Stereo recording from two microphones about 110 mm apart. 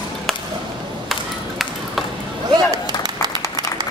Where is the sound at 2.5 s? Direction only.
35° right (ahead or behind).